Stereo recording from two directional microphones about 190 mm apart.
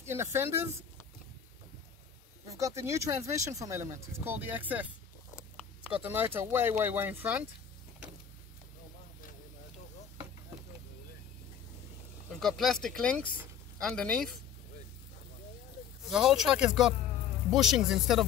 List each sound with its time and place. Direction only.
0.1 s speech: 15° right (ahead or behind)
2.4 s speech: 15° right (ahead or behind)
6.0 s speech: 10° right (ahead or behind)
12.3 s speech: centre (ahead or behind)
16.1 s speech: 5° right (ahead or behind)